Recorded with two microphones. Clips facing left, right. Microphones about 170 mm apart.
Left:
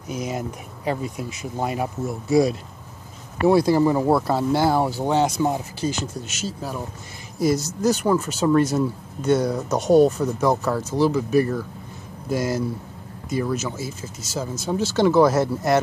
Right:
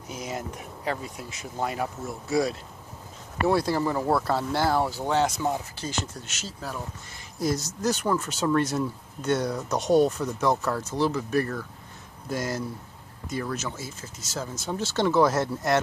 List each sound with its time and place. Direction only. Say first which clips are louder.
0.1 s speech: left 6 dB; 15° left (ahead or behind)